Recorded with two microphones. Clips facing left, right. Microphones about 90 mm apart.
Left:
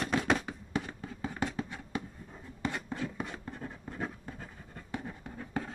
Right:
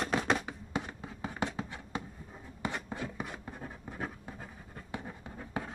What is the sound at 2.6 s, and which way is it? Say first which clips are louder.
Writing: left 2 dB; 15° right (ahead or behind).